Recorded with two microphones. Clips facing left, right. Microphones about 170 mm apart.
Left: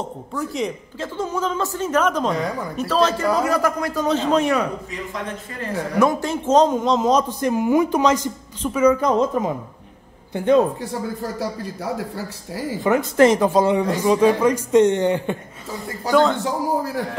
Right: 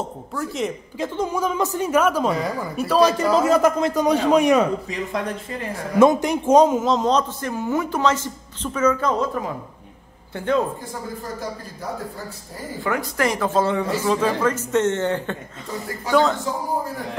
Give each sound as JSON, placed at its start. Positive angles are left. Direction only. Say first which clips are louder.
{"t": 0.3, "sound": "speech", "louder": "left 1 dB", "side_deg": 0}
{"t": 0.9, "sound": "a woman's voice", "louder": "right 3 dB", "side_deg": -15}
{"t": 3.3, "sound": "a woman's voice", "louder": "right 3 dB", "side_deg": -25}
{"t": 12.8, "sound": "a man's voice", "louder": "left 8 dB", "side_deg": 25}
{"t": 16.1, "sound": "speech", "louder": "left 2 dB", "side_deg": 0}
{"t": 16.4, "sound": "a man's voice", "louder": "left 3 dB", "side_deg": 80}